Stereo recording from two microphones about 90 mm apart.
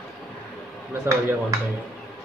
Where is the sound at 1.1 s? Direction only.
30° right (ahead or behind).